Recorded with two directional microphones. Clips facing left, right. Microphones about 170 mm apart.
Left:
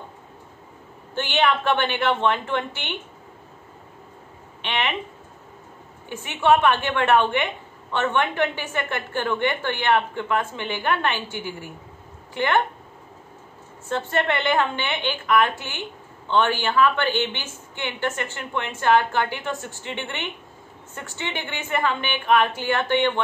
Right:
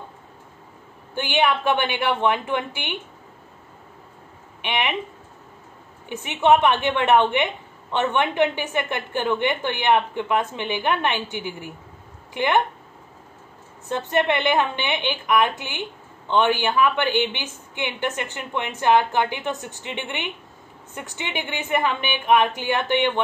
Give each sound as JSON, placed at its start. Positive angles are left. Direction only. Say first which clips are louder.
{"t": 1.1, "sound": "a woman's voice", "louder": "even", "side_deg": -10}
{"t": 4.6, "sound": "a woman's voice", "louder": "right 1 dB", "side_deg": -15}
{"t": 6.0, "sound": "a woman's voice", "louder": "right 1 dB", "side_deg": -20}
{"t": 13.8, "sound": "a woman's voice", "louder": "right 2 dB", "side_deg": -15}